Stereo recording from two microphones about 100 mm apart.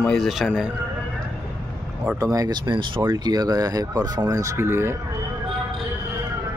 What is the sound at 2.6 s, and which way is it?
Speech, 55° right (ahead or behind).